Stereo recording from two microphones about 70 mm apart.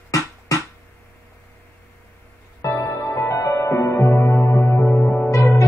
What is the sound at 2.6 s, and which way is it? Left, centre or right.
Music, left.